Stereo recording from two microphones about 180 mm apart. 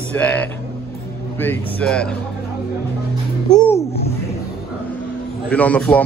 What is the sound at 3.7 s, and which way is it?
Babbling, 35° left (ahead or behind).